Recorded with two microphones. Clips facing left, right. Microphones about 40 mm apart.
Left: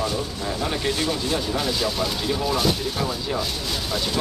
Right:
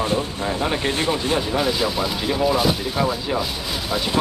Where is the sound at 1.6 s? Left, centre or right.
Centre.